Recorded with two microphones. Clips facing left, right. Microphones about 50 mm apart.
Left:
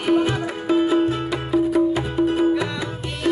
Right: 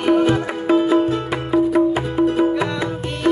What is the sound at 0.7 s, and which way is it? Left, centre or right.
Music, right.